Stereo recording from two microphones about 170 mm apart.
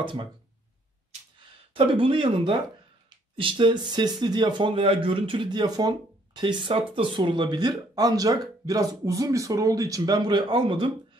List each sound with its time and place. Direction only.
0.0 s speech: 30° right (ahead or behind)
1.7 s speech: 30° right (ahead or behind)